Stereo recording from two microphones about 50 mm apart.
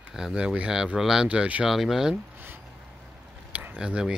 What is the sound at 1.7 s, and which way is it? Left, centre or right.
Speech, centre.